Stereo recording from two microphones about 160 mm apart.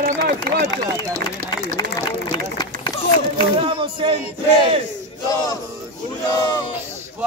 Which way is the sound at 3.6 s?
35° right (ahead or behind).